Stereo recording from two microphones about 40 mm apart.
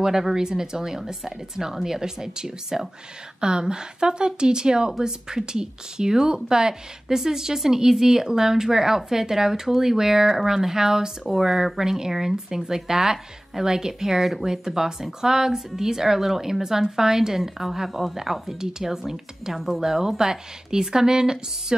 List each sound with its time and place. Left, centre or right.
0.0 s a woman's voice: centre